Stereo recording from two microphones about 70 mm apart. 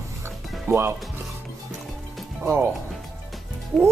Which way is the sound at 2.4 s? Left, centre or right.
Right.